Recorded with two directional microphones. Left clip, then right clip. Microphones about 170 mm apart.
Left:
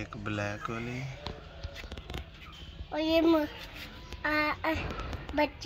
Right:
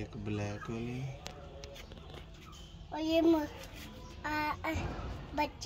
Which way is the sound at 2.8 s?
35° left (ahead or behind).